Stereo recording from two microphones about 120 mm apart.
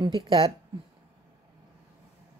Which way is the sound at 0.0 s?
40° right (ahead or behind).